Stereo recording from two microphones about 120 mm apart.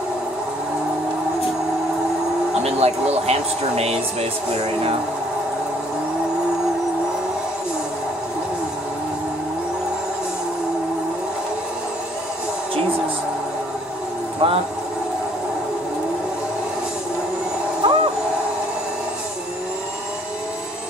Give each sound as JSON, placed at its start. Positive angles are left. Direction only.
{"t": 2.6, "sound": "speech", "side_deg": -60}
{"t": 14.4, "sound": "a sound", "side_deg": -50}
{"t": 17.8, "sound": "owl", "side_deg": -45}